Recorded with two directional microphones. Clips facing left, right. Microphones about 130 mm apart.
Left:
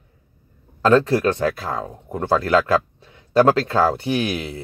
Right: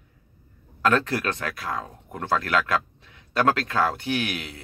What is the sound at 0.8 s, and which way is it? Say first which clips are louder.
Speech: left 7 dB; 30° left (ahead or behind).